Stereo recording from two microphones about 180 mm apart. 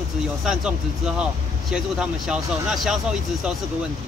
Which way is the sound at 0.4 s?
5° right (ahead or behind).